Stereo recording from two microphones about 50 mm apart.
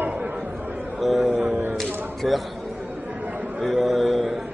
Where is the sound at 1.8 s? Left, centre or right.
Centre.